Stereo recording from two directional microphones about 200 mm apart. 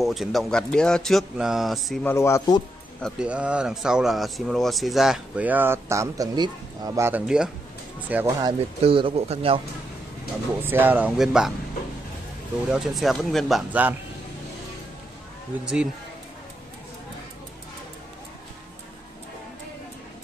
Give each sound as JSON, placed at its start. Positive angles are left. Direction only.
{"t": 0.0, "sound": "speech", "side_deg": 0}
{"t": 2.0, "sound": "speech", "side_deg": 15}
{"t": 3.0, "sound": "speech", "side_deg": -5}
{"t": 8.4, "sound": "speech", "side_deg": -25}
{"t": 10.6, "sound": "speech", "side_deg": -10}
{"t": 12.6, "sound": "speech", "side_deg": -5}
{"t": 15.6, "sound": "speech", "side_deg": -5}